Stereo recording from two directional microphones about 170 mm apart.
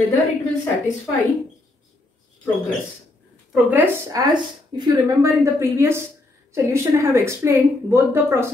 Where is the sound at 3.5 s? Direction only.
10° right (ahead or behind).